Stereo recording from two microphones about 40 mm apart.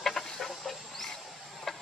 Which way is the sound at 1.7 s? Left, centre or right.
Centre.